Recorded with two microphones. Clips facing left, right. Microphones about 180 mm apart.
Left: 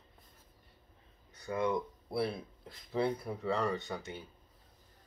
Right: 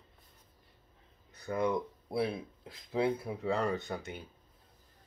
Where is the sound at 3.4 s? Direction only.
Centre (ahead or behind).